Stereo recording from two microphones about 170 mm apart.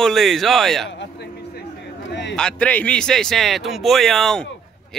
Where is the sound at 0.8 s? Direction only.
90° left.